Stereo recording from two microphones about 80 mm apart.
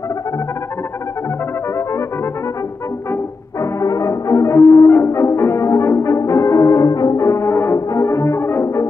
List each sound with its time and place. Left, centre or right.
3.8 s brass instrument: left